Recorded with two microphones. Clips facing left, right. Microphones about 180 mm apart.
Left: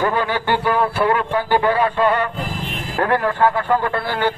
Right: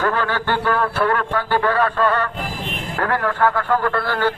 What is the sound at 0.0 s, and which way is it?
A man's voice, 15° left (ahead or behind).